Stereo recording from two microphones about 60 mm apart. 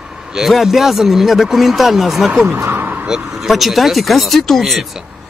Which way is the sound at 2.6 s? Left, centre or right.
Right.